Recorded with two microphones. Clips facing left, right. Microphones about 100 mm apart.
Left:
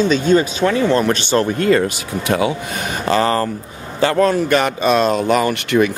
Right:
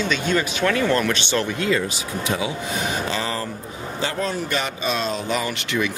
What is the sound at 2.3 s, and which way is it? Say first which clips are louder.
Speech: left 8 dB; 65° left (ahead or behind).